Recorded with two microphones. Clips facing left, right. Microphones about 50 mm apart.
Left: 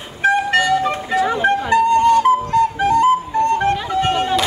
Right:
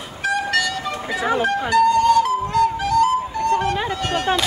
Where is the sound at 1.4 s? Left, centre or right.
Left.